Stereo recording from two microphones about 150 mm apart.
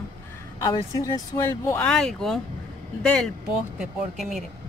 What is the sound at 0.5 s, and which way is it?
Speech, 20° left (ahead or behind).